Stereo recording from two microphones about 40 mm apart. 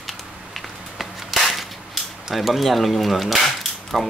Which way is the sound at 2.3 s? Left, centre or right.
Centre.